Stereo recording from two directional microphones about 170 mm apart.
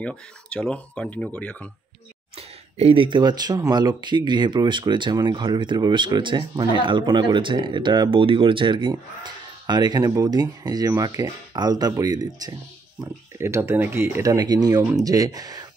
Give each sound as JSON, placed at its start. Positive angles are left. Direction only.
{"t": 0.0, "sound": "speech", "side_deg": 5}
{"t": 2.3, "sound": "speech", "side_deg": -35}